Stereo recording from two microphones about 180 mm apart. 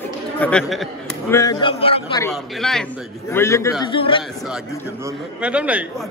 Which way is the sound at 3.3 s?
15° left (ahead or behind).